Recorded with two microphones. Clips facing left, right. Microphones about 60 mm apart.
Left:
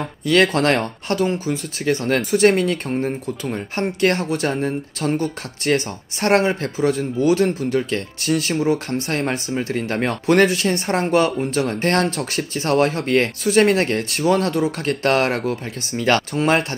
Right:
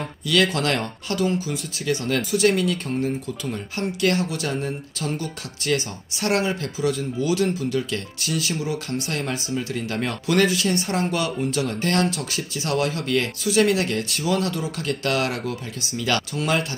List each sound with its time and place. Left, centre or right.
0.3 s speech: left